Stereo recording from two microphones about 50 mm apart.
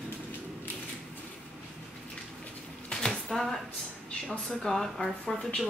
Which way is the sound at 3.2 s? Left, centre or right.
Centre.